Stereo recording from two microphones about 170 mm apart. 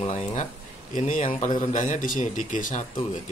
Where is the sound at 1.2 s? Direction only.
40° left (ahead or behind).